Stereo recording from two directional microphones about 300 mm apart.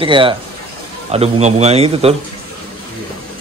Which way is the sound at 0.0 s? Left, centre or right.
Centre.